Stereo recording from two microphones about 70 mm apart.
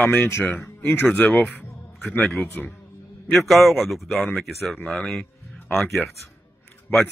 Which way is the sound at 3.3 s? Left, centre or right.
Centre.